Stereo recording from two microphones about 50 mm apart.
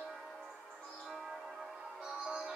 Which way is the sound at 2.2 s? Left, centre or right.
Centre.